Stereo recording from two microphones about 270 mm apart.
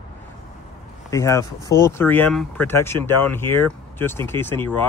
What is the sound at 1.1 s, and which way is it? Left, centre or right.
Speech, centre.